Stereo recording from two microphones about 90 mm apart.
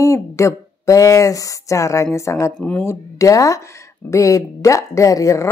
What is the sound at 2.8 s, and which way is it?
Speech, 40° left (ahead or behind).